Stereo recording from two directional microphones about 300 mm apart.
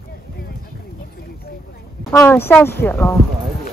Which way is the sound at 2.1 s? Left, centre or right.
Centre.